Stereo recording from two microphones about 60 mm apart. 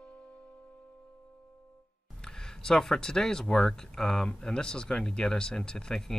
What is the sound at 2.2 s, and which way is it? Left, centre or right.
Speech, centre.